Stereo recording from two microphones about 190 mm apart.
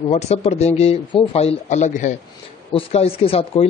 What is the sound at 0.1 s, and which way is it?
Speech, 35° left (ahead or behind).